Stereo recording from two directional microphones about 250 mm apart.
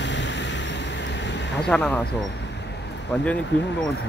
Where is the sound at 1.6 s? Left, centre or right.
Centre.